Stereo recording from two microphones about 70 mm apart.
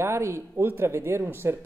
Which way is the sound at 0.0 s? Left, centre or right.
Right.